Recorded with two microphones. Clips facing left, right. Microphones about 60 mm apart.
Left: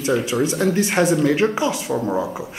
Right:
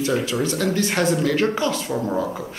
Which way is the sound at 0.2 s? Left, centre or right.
Centre.